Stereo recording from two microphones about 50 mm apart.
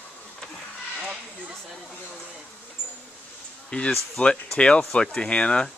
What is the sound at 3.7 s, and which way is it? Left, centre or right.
Speech, centre.